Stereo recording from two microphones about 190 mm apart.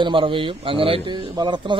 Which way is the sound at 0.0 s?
25° right (ahead or behind).